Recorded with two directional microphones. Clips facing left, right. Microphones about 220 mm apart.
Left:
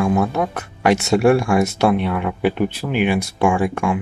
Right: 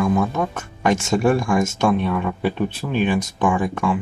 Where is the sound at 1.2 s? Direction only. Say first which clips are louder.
Left 3 dB; 10° left (ahead or behind).